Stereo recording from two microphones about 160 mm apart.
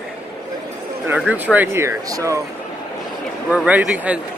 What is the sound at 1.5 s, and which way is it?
Speech, 15° right (ahead or behind).